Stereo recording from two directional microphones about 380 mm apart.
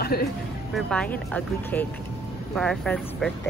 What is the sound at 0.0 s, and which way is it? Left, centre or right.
Speech, left.